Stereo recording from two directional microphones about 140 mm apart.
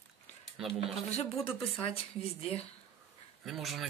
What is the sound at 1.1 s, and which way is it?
Speech, 45° left (ahead or behind).